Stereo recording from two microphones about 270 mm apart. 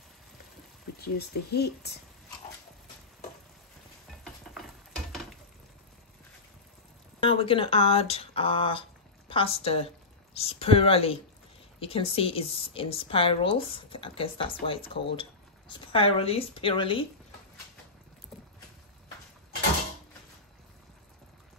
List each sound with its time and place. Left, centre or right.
1.0 s speech: left
4.5 s stir: centre
7.2 s a woman's voice: centre
18.3 s patter: centre